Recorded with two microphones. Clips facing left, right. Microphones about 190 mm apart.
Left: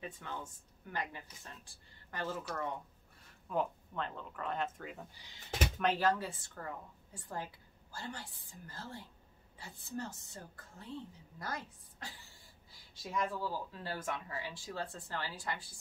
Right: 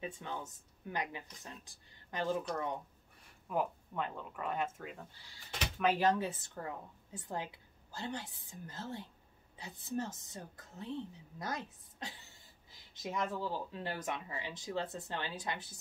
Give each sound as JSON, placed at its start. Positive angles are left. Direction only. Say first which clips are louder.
{"t": 0.0, "sound": "speech", "louder": "right 2 dB", "side_deg": -20}
{"t": 5.1, "sound": "speech", "louder": "left 1 dB", "side_deg": 15}
{"t": 5.9, "sound": "speech", "louder": "right 2 dB", "side_deg": -20}